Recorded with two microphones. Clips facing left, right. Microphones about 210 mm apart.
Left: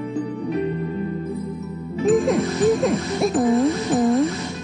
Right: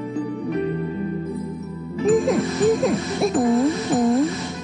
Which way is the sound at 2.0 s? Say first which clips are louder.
Even; centre (ahead or behind).